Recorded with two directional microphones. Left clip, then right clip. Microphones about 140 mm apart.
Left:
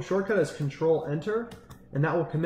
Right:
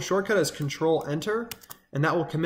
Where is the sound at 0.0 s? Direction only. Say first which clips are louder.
Right 2 dB; 20° right (ahead or behind).